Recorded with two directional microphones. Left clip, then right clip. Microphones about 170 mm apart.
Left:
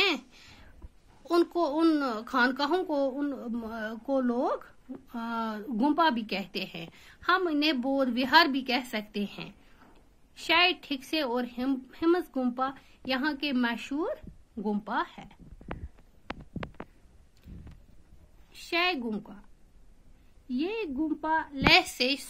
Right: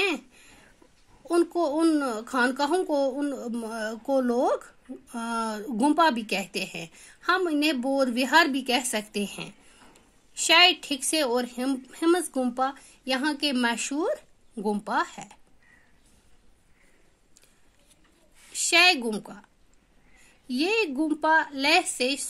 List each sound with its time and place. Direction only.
1.2 s a child's voice: 30° right (ahead or behind)
18.5 s a woman's voice: 35° right (ahead or behind)
20.4 s a woman's voice: 35° right (ahead or behind)